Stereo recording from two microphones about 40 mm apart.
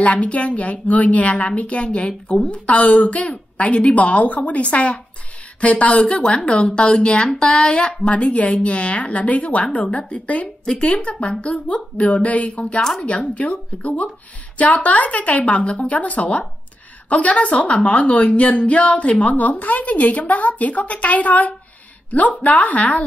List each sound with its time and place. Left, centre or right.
0.0 s a woman's voice: left